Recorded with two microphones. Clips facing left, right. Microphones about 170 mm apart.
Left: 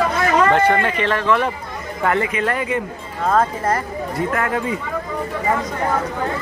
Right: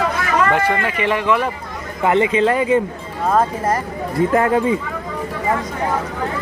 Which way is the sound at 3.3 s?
10° right (ahead or behind).